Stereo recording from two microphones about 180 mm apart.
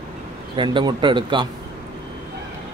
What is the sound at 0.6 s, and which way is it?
Speech, 25° right (ahead or behind).